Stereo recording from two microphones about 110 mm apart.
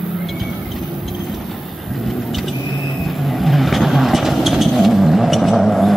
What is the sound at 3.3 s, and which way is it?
Vehicle, centre (ahead or behind).